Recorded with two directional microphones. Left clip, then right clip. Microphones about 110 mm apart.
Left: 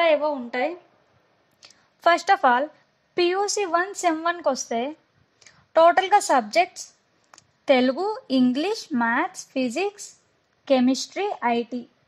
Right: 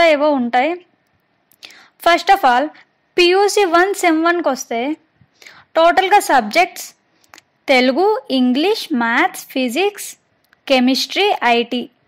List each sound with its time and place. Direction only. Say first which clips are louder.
0.0 s a woman's voice: right 8 dB; 30° right (ahead or behind)
3.2 s a woman's voice: right 10 dB; 55° right (ahead or behind)
3.6 s speech: right 9 dB; 40° right (ahead or behind)
10.8 s a woman's voice: right 9 dB; 65° right (ahead or behind)